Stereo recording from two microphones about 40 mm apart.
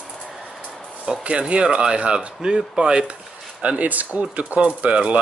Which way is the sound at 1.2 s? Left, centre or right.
Right.